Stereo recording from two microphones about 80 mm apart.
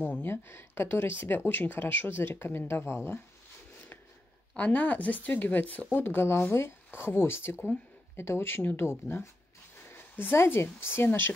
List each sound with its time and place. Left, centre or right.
0.0 s speech: left
4.6 s speech: centre